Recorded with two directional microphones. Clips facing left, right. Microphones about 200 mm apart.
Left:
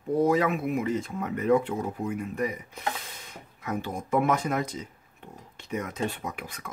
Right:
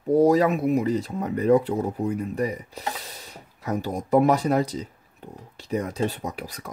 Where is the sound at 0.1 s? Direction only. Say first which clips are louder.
Right 5 dB; 40° right (ahead or behind).